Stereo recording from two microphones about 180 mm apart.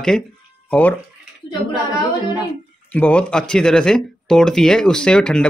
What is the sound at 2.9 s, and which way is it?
A man's voice, 10° left (ahead or behind).